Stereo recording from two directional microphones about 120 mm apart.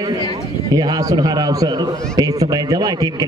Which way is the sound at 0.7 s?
30° right (ahead or behind).